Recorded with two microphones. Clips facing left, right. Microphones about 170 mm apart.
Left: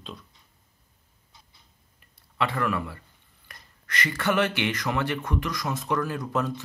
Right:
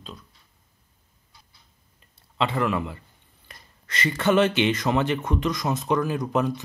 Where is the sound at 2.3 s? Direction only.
20° right (ahead or behind).